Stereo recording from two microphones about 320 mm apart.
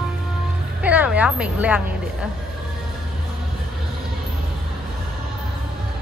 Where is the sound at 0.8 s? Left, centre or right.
Centre.